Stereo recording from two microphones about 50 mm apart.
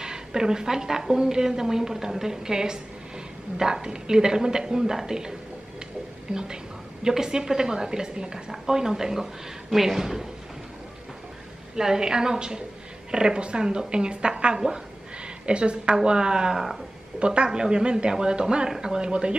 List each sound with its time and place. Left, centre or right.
0.0 s a woman's voice: centre
6.3 s a woman's voice: centre
11.7 s a woman's voice: centre